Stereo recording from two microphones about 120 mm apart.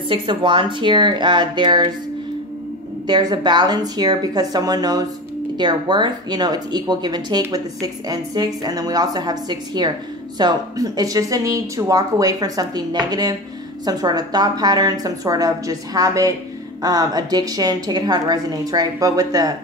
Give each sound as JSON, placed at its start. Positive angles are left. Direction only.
{"t": 0.1, "sound": "speech", "side_deg": -40}
{"t": 3.1, "sound": "speech", "side_deg": -35}